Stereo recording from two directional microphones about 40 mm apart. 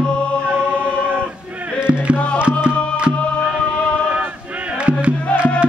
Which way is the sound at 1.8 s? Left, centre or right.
Right.